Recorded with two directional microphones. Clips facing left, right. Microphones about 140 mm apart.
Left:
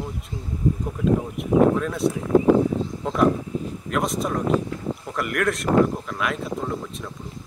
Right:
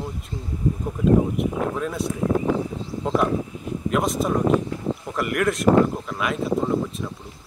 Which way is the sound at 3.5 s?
35° left (ahead or behind).